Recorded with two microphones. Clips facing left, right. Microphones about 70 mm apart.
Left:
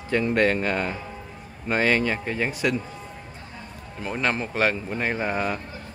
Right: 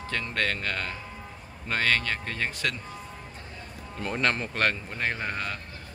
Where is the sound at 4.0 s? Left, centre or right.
Centre.